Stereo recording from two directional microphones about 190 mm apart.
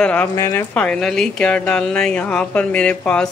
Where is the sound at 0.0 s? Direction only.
10° left (ahead or behind).